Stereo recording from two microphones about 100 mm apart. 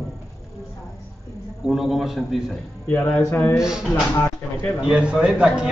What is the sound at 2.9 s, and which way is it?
Speech, 20° left (ahead or behind).